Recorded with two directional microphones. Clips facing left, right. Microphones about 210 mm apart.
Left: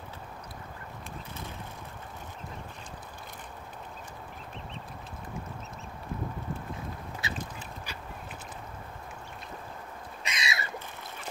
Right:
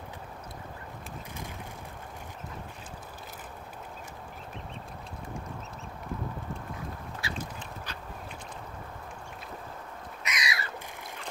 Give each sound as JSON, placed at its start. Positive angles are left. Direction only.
{"t": 7.2, "sound": "duck", "side_deg": 20}
{"t": 10.2, "sound": "bird", "side_deg": 25}